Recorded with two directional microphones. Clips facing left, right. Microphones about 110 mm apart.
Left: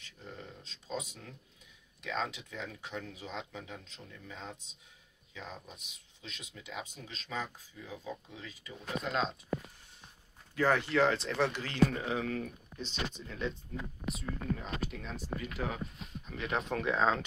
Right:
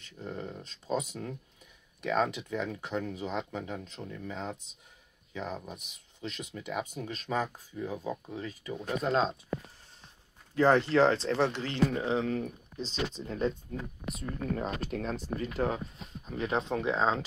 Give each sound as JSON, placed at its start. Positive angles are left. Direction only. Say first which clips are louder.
{"t": 0.2, "sound": "speech", "louder": "right 9 dB", "side_deg": -60}
{"t": 9.1, "sound": "speech", "louder": "right 6 dB", "side_deg": -35}
{"t": 10.5, "sound": "speech", "louder": "right 5 dB", "side_deg": -25}